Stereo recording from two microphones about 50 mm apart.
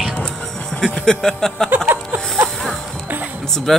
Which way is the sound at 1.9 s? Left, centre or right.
Right.